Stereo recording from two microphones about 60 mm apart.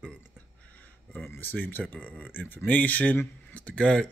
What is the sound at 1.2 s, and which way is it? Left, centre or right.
Speech, left.